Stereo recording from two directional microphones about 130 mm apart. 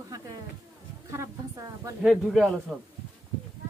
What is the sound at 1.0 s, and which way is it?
Speech, 25° right (ahead or behind).